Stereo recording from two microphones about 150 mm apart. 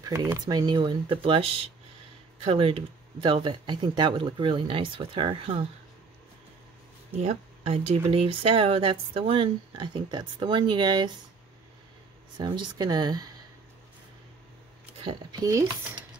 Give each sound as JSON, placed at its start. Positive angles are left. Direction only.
{"t": 0.0, "sound": "speech", "side_deg": -20}
{"t": 7.2, "sound": "speech", "side_deg": -45}
{"t": 12.4, "sound": "speech", "side_deg": -30}
{"t": 15.3, "sound": "speech", "side_deg": -25}